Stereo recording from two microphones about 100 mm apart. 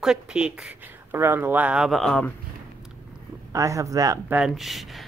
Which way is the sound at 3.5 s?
30° right (ahead or behind).